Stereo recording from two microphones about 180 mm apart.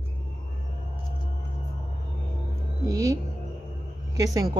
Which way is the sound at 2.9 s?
20° right (ahead or behind).